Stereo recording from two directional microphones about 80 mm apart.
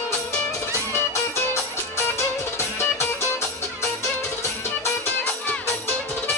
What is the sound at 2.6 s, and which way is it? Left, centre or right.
Music, left.